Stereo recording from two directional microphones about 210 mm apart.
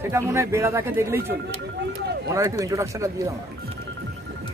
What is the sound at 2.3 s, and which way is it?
Speech, 15° right (ahead or behind).